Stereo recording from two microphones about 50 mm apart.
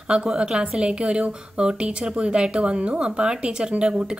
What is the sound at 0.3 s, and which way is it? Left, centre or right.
A woman's voice, centre.